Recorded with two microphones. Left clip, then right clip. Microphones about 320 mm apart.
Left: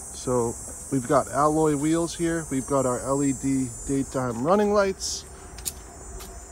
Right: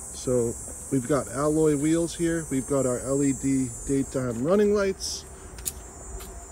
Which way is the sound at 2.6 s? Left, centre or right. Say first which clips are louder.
Left 3 dB; centre.